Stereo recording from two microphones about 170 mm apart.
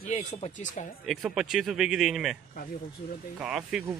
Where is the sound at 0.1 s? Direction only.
45° left (ahead or behind).